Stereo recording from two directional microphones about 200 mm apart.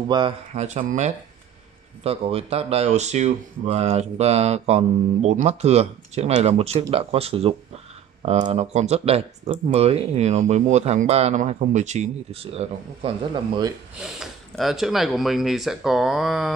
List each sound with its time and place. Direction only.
0.6 s speech: 35° right (ahead or behind)
13.9 s speech: 5° right (ahead or behind)